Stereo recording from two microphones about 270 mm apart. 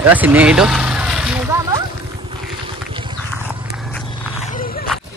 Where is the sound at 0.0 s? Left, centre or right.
Centre.